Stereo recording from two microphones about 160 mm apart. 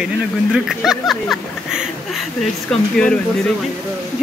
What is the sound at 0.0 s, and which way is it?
Speech, 5° right (ahead or behind).